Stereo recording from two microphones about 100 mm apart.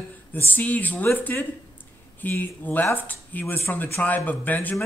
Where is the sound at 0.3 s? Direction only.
20° left (ahead or behind).